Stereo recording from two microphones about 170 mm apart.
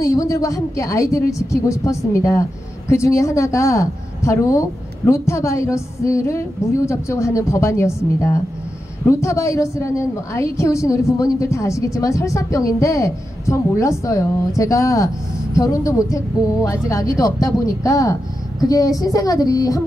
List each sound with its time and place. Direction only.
0.0 s a woman's voice: 20° left (ahead or behind)